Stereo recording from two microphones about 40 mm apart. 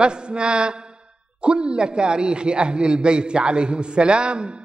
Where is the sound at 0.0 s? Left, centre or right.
Right.